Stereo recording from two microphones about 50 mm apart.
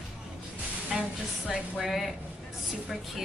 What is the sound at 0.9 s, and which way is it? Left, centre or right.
Music, centre.